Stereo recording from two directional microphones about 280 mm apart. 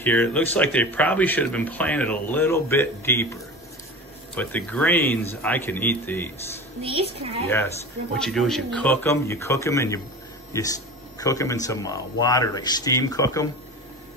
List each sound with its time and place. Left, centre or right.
0.0 s speech: centre
4.4 s speech: centre
6.8 s a woman's voice: right
7.4 s speech: centre